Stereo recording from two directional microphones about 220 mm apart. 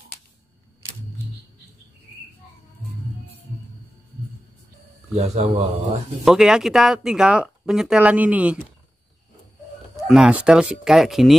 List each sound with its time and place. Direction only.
5.1 s a man's voice: 30° right (ahead or behind)
6.2 s speech: centre (ahead or behind)
10.0 s speech: 5° right (ahead or behind)